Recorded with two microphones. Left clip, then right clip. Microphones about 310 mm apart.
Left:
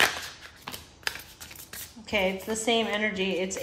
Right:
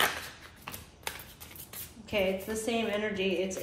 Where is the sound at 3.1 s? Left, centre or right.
Left.